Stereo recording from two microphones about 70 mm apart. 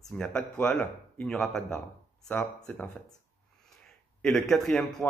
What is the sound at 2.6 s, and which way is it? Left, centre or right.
Speech, left.